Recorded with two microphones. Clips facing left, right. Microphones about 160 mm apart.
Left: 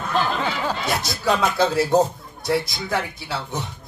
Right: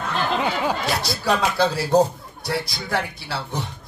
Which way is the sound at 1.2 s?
20° left (ahead or behind).